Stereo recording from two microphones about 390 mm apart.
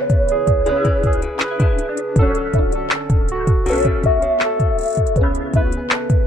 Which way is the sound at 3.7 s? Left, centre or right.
Centre.